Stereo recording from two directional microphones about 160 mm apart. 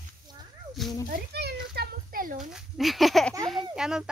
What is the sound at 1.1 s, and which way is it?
Children playing, 85° right.